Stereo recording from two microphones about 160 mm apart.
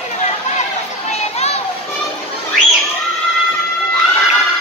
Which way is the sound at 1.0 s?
40° left (ahead or behind).